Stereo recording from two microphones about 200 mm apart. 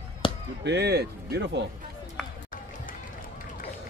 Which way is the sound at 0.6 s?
55° right (ahead or behind).